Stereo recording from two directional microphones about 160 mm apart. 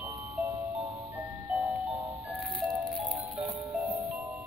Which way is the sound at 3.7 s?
10° right (ahead or behind).